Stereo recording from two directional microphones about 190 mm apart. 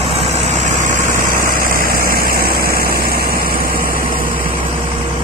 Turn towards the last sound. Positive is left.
turn(degrees=-50)  # may be behind; listen again after turning